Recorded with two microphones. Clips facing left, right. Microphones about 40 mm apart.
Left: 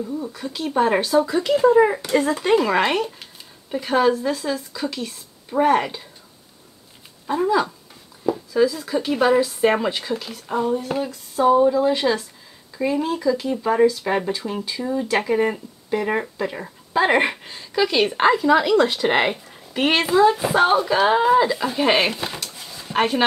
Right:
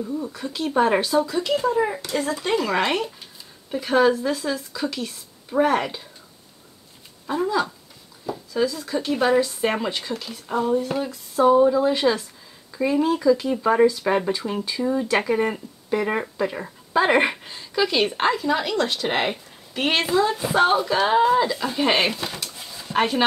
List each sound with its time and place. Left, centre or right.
0.0 s speech: centre
1.2 s speech: centre
2.0 s speech: left
2.4 s speech: centre
7.2 s speech: centre